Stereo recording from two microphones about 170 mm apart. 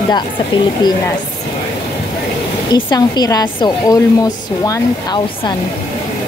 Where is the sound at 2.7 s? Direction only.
25° left (ahead or behind).